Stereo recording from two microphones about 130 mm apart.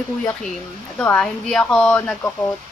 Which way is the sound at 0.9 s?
10° left (ahead or behind).